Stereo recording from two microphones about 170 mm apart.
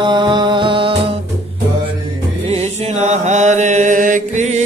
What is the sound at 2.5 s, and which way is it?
Mantra, 40° right (ahead or behind).